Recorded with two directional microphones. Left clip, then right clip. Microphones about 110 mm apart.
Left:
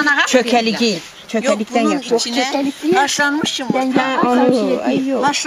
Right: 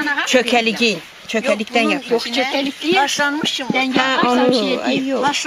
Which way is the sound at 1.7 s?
20° right (ahead or behind).